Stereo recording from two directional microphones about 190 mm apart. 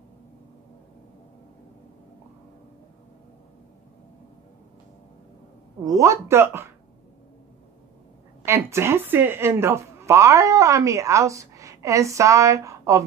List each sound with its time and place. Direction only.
5.9 s speech: 15° right (ahead or behind)
8.5 s speech: 15° right (ahead or behind)